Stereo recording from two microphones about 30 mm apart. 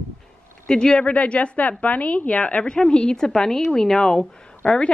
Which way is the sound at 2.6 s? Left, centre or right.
Left.